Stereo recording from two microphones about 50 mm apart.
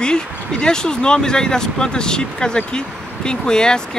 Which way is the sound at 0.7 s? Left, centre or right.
Centre.